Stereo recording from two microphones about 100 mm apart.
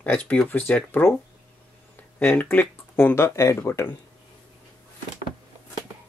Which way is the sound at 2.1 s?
20° left (ahead or behind).